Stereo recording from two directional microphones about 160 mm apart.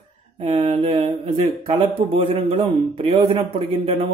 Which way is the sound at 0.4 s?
35° right (ahead or behind).